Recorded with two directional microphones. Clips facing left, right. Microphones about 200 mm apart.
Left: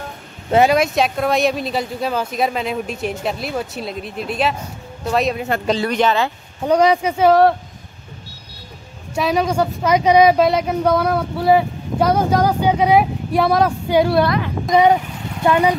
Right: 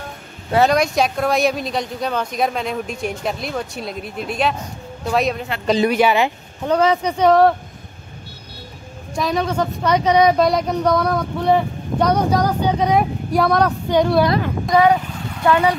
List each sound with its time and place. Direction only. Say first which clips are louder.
0.7 s speech: left 1 dB; centre (ahead or behind)
5.9 s speech: right 1 dB; 10° right (ahead or behind)
6.7 s a woman's voice: left 2 dB; 15° left (ahead or behind)
9.1 s a woman's voice: left 2 dB; 10° left (ahead or behind)
14.7 s a woman's voice: left 1 dB; 20° left (ahead or behind)